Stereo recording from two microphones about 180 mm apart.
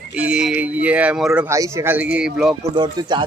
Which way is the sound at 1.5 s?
15° right (ahead or behind).